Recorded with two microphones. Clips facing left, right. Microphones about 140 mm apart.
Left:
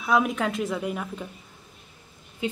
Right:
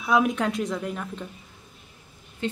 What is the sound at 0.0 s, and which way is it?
Speech, centre (ahead or behind).